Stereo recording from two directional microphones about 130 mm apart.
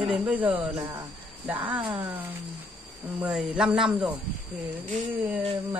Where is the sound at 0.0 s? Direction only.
10° right (ahead or behind).